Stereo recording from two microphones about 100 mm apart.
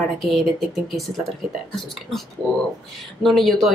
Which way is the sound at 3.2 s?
Centre (ahead or behind).